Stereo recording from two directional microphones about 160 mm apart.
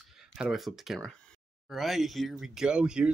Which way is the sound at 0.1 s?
5° right (ahead or behind).